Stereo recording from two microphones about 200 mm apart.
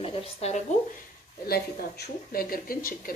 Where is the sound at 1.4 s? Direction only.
50° left (ahead or behind).